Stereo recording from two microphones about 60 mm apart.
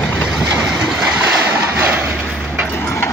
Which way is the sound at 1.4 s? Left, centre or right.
Right.